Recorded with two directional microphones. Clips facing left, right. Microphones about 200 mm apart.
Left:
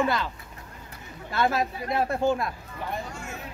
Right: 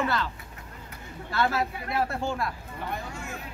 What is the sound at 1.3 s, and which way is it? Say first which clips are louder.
Speech: left 2 dB; 20° left (ahead or behind).